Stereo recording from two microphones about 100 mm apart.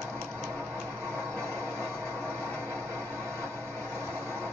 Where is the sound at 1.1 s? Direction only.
25° right (ahead or behind).